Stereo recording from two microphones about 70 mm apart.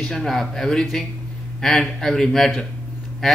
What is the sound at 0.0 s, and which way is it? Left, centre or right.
A man's voice, centre.